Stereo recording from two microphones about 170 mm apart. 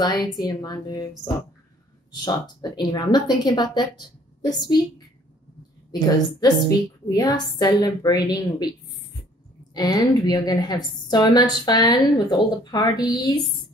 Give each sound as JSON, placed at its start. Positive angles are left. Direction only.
{"t": 0.0, "sound": "a woman's voice", "side_deg": 25}
{"t": 5.9, "sound": "a woman's voice", "side_deg": 25}
{"t": 9.8, "sound": "a woman's voice", "side_deg": 25}